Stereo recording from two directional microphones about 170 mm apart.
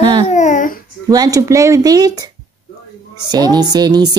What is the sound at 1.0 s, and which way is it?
Speech, 20° right (ahead or behind).